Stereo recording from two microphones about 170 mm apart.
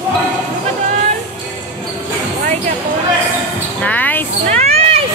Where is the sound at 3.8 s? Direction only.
10° left (ahead or behind).